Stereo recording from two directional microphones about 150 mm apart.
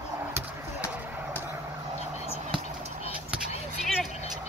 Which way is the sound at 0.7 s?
10° right (ahead or behind).